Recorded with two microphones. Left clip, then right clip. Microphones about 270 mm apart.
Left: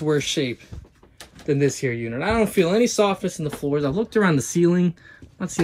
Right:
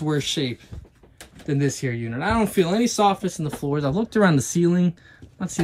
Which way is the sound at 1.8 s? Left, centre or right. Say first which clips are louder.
Left 2 dB; centre.